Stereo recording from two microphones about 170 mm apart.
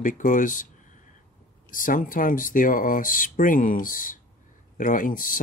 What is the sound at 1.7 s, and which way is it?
Speech, 55° left (ahead or behind).